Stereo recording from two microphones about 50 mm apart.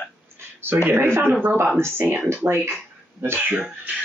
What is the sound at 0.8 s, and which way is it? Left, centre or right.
Speech, right.